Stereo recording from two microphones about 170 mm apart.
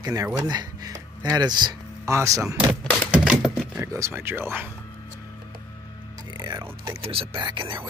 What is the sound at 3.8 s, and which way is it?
Speech, 15° right (ahead or behind).